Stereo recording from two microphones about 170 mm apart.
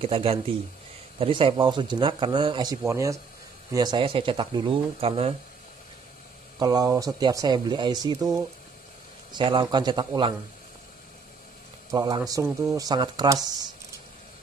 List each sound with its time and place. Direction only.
0.0 s speech: 35° right (ahead or behind)
6.6 s speech: 20° right (ahead or behind)
9.3 s speech: 25° right (ahead or behind)
11.9 s speech: 25° right (ahead or behind)